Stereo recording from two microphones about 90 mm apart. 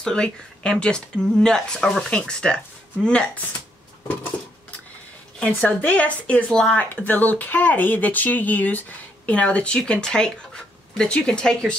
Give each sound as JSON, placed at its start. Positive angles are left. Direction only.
{"t": 0.0, "sound": "speech", "side_deg": 10}
{"t": 5.4, "sound": "speech", "side_deg": 15}
{"t": 6.8, "sound": "speech", "side_deg": 20}